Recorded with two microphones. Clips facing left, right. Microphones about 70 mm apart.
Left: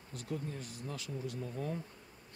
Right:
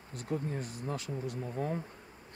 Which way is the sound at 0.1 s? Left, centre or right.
Right.